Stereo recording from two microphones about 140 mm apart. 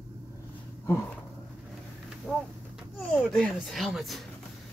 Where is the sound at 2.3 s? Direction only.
10° right (ahead or behind).